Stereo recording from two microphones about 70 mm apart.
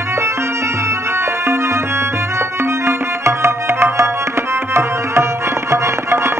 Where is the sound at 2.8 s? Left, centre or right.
Right.